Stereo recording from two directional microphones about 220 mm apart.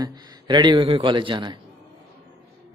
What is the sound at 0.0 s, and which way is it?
A man's voice, 20° right (ahead or behind).